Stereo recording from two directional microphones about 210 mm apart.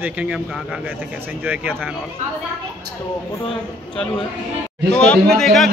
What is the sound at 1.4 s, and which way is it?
Speech, 10° right (ahead or behind).